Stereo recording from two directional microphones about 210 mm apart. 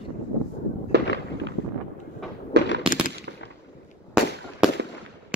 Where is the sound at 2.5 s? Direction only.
55° right (ahead or behind).